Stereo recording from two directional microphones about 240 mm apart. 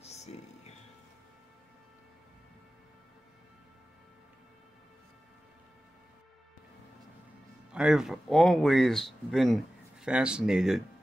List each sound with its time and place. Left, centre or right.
0.0 s music: left
7.7 s speech: centre